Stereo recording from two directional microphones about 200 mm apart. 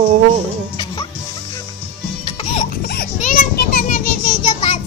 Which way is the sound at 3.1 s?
40° left (ahead or behind).